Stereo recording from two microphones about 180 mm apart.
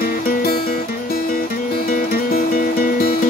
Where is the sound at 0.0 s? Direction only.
55° left (ahead or behind).